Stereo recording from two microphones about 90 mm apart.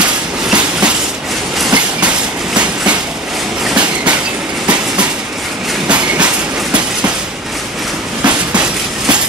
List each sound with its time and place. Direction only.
0.0 s train: 10° right (ahead or behind)
5.9 s train: 10° right (ahead or behind)